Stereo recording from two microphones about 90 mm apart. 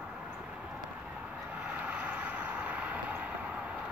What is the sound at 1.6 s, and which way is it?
Vehicle, 15° right (ahead or behind).